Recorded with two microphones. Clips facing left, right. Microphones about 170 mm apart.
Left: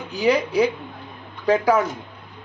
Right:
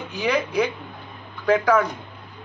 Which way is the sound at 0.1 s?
35° left (ahead or behind).